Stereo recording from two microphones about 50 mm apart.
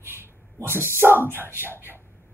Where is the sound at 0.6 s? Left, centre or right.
Right.